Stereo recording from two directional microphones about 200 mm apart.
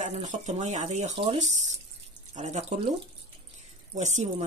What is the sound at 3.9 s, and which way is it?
Speech, 35° right (ahead or behind).